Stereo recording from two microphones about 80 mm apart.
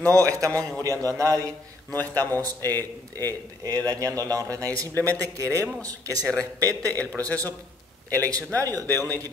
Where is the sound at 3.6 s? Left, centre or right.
Right.